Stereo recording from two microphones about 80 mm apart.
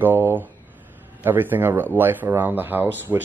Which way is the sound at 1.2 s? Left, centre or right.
Right.